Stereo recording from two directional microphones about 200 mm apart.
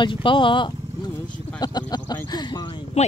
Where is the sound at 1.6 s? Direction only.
20° left (ahead or behind).